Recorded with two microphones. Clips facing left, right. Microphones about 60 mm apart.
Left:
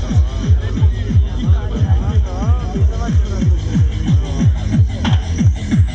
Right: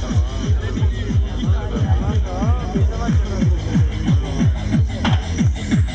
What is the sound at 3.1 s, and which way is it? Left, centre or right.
Music, right.